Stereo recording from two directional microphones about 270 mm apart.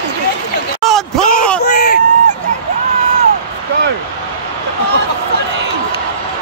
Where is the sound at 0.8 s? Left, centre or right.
Centre.